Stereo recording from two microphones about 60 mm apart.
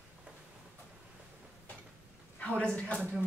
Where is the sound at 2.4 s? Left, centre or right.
Centre.